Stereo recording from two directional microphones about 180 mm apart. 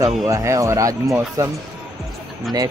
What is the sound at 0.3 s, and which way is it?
Speech, 15° right (ahead or behind).